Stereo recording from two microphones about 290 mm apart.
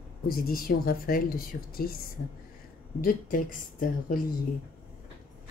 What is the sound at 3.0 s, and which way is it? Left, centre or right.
Speech, left.